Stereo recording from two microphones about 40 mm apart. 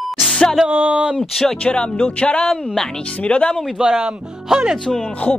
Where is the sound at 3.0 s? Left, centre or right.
Left.